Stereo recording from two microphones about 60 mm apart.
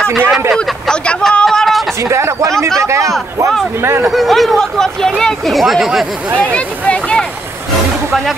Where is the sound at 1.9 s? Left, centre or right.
Right.